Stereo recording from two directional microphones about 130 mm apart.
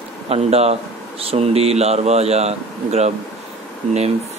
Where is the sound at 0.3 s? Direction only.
50° right (ahead or behind).